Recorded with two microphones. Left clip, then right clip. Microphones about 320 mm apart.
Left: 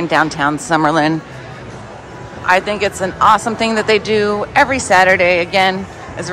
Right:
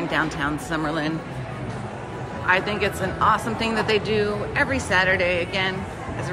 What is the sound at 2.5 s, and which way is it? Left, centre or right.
Speech, centre.